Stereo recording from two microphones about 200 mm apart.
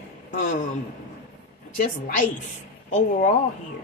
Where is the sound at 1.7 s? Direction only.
40° left (ahead or behind).